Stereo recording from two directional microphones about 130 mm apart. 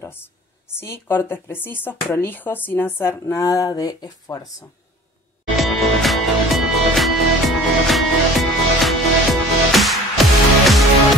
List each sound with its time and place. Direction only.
0.0 s a sound: 15° left (ahead or behind)
0.7 s speech: 20° left (ahead or behind)
5.6 s music: centre (ahead or behind)